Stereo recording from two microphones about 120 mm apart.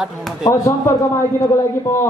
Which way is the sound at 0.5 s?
30° left (ahead or behind).